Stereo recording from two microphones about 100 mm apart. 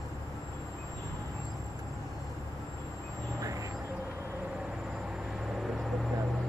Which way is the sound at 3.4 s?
35° right (ahead or behind).